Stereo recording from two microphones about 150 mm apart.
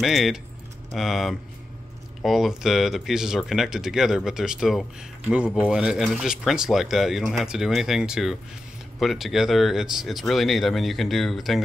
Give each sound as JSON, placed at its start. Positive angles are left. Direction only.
{"t": 0.0, "sound": "speech", "side_deg": 0}